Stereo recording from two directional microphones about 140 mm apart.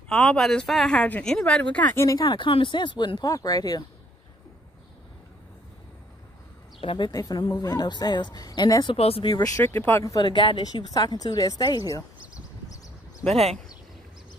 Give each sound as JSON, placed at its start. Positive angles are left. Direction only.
{"t": 0.1, "sound": "speech", "side_deg": 5}
{"t": 2.0, "sound": "speech", "side_deg": 25}
{"t": 6.8, "sound": "a woman's voice", "side_deg": 35}
{"t": 8.9, "sound": "speech", "side_deg": 45}
{"t": 9.2, "sound": "a woman's voice", "side_deg": 30}
{"t": 9.6, "sound": "speech", "side_deg": 15}
{"t": 10.2, "sound": "a woman's voice", "side_deg": 35}